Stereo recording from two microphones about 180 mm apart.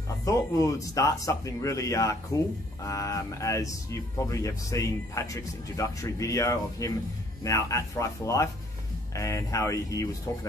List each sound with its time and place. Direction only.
0.2 s speech: 20° left (ahead or behind)